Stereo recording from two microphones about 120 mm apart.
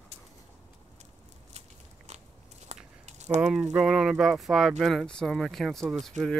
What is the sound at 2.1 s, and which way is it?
Biting, 70° right (ahead or behind).